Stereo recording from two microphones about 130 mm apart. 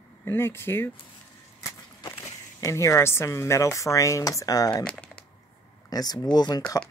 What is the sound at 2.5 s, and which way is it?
Speech, 25° left (ahead or behind).